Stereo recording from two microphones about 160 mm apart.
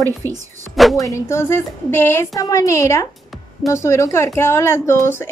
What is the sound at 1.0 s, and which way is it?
A woman's voice, 15° left (ahead or behind).